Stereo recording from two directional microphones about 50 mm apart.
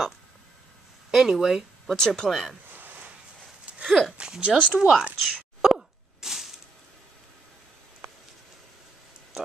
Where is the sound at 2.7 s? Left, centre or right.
Right.